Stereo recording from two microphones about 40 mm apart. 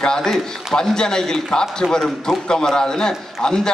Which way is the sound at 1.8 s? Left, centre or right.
Right.